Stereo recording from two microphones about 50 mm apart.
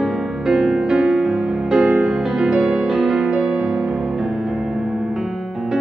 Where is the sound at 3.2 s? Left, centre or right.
Right.